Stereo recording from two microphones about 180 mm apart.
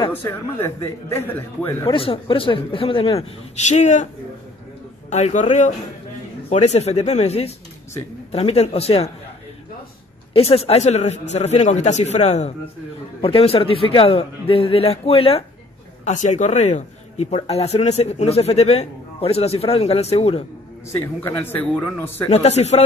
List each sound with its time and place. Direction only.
0.1 s a man's voice: 10° left (ahead or behind)
1.9 s speech: 30° left (ahead or behind)
5.1 s speech: 40° left (ahead or behind)
10.3 s speech: 35° left (ahead or behind)
20.9 s a man's voice: 15° left (ahead or behind)
22.3 s speech: 35° left (ahead or behind)